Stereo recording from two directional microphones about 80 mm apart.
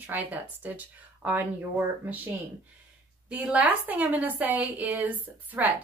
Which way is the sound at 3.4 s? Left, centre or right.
Centre.